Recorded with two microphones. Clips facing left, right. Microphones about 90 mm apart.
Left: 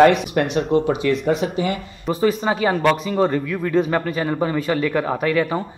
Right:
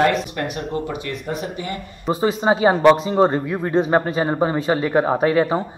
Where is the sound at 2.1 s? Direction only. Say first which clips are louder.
Right 1 dB; 25° right (ahead or behind).